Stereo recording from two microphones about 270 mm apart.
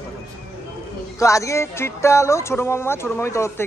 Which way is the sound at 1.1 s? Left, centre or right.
Centre.